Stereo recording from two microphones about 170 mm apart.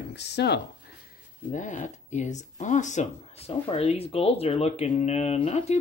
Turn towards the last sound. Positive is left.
turn(degrees=40)  # may be behind; listen again after turning